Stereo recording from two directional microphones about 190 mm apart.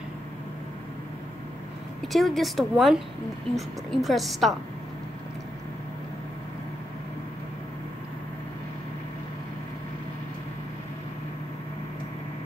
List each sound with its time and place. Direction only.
2.1 s a woman's voice: centre (ahead or behind)